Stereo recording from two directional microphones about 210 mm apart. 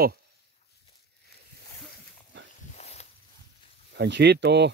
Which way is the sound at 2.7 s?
30° left (ahead or behind).